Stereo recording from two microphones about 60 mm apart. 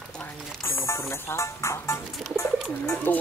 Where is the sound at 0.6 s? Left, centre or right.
Left.